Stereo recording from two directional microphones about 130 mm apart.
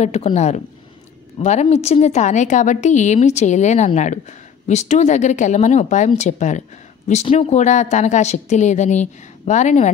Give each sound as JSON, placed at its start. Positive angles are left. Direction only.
{"t": 0.0, "sound": "a woman's voice", "side_deg": 55}